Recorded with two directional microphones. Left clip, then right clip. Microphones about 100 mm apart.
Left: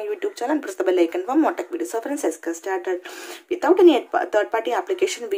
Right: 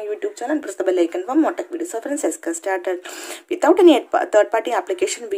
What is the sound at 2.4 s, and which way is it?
Speech, 45° right (ahead or behind).